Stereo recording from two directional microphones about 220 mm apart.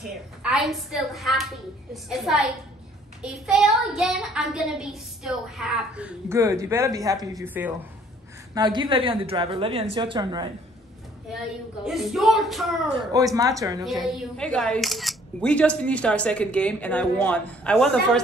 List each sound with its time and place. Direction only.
0.4 s speech: centre (ahead or behind)
8.5 s a woman's voice: 20° right (ahead or behind)
11.8 s speech: centre (ahead or behind)
12.9 s speech: 15° right (ahead or behind)
13.8 s speech: centre (ahead or behind)